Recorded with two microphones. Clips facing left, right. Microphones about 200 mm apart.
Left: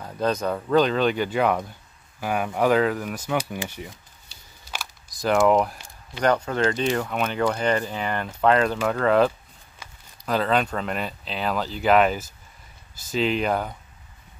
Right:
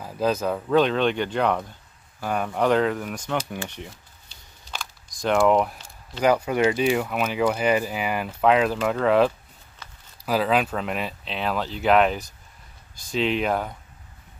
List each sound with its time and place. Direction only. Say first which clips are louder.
0.0 s speech: right 1 dB; 5° right (ahead or behind)
3.6 s camera: left 1 dB; 5° left (ahead or behind)
6.2 s speech: right 2 dB; 10° right (ahead or behind)
9.8 s a sound: left 1 dB; 10° left (ahead or behind)
10.2 s speech: right 1 dB; 5° right (ahead or behind)